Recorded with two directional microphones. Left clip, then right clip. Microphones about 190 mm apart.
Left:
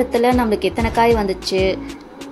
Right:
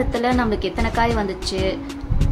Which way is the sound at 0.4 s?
10° left (ahead or behind).